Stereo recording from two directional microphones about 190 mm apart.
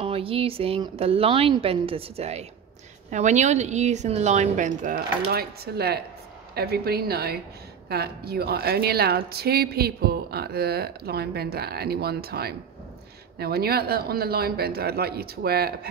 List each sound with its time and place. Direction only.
0.0 s a woman's voice: 30° right (ahead or behind)
5.3 s speech: 55° right (ahead or behind)